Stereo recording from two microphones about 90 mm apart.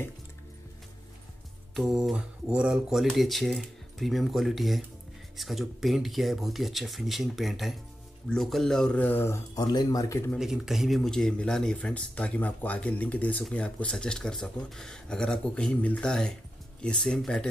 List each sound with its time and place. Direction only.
1.8 s speech: 5° right (ahead or behind)
8.9 s speech: 20° left (ahead or behind)
9.6 s speech: 45° left (ahead or behind)
10.4 s speech: 5° right (ahead or behind)